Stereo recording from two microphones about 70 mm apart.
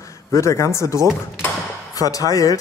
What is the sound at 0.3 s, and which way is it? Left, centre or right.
Speech, left.